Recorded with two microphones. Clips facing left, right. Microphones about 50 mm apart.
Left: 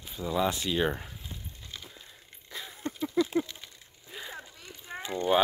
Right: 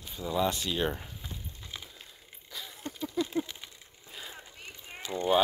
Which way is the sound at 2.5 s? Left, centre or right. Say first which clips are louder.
Left 2 dB; centre.